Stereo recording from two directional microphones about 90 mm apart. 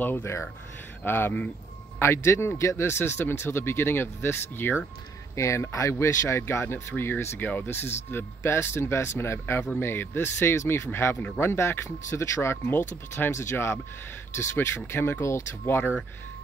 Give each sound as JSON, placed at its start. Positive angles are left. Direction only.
{"t": 0.0, "sound": "speech", "side_deg": 25}